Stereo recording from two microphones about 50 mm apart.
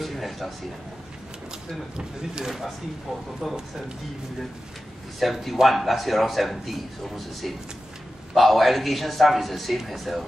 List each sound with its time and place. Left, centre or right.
0.0 s a sound: centre
2.0 s speech: centre
3.3 s a man's voice: centre
5.2 s a man's voice: centre